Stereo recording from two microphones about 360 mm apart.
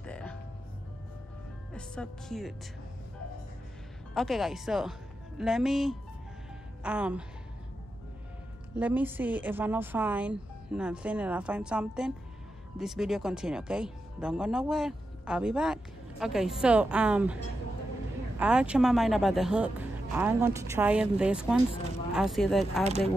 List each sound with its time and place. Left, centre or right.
0.0 s music: centre
1.7 s speech: centre
4.1 s speech: centre
8.7 s speech: centre
18.4 s speech: centre
22.8 s speech: centre